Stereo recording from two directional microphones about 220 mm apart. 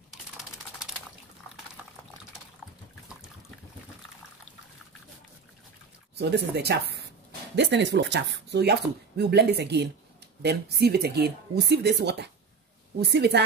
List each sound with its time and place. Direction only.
6.1 s speech: 50° right (ahead or behind)